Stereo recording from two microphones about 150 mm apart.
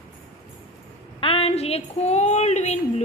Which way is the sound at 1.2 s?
40° left (ahead or behind).